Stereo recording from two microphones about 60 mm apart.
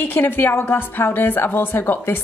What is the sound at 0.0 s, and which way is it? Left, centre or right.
A woman's voice, left.